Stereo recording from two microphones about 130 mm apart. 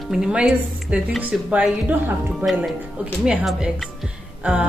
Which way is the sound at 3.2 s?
5° right (ahead or behind).